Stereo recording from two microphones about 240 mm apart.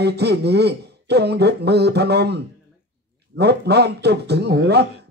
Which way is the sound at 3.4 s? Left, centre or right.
Right.